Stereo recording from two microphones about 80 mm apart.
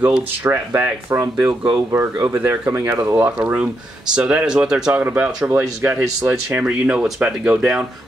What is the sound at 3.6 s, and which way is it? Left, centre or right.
Speech, centre.